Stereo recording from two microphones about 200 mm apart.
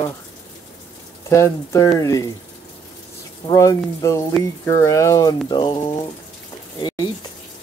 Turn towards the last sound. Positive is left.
turn(degrees=20)  # may be behind; listen again after turning